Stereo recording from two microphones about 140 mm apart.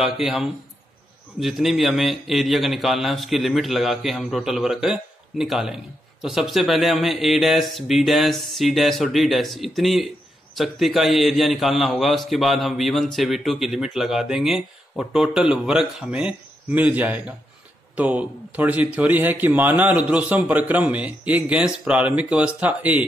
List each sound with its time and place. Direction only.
0.0 s a man's voice: centre (ahead or behind)